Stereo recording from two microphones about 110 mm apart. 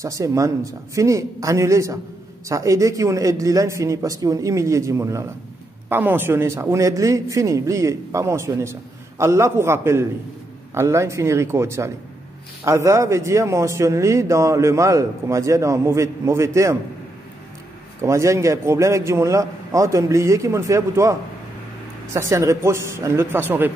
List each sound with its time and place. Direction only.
0.0 s a man's voice: 30° right (ahead or behind)
18.0 s a man's voice: 30° right (ahead or behind)